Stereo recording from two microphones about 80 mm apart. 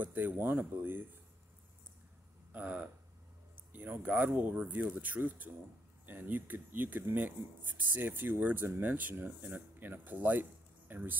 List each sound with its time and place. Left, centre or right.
0.0 s speech: right
2.5 s speech: centre